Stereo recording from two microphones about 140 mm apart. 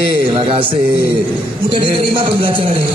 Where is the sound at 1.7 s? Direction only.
35° right (ahead or behind).